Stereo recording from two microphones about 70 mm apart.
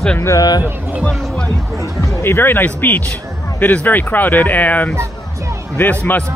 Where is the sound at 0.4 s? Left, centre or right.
Left.